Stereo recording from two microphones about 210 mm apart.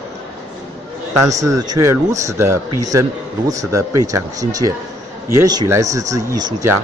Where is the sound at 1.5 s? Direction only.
15° right (ahead or behind).